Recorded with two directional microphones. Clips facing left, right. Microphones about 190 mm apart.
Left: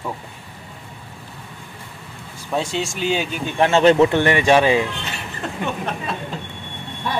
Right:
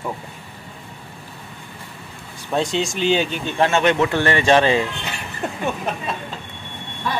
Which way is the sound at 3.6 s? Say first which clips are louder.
Left 4 dB; 30° left (ahead or behind).